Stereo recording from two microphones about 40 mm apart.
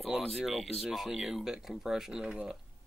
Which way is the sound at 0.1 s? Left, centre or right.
Centre.